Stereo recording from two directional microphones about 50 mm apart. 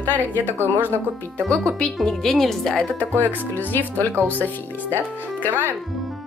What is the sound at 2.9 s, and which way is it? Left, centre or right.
Speech, left.